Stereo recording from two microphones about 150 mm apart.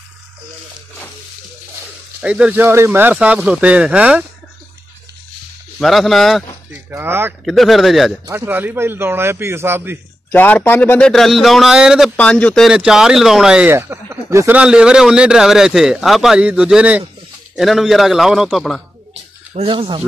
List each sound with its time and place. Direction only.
2.2 s speech: 10° right (ahead or behind)
5.8 s a man's voice: centre (ahead or behind)
6.7 s speech: 15° right (ahead or behind)
7.4 s a man's voice: centre (ahead or behind)
8.3 s speech: 15° right (ahead or behind)
10.3 s a man's voice: 10° left (ahead or behind); by 12.1 s 5° right (ahead or behind)
12.2 s speech: 10° left (ahead or behind)
12.6 s a man's voice: 5° right (ahead or behind)
13.7 s speech: 15° right (ahead or behind)
14.6 s a man's voice: 5° right (ahead or behind)
19.5 s speech: 40° right (ahead or behind)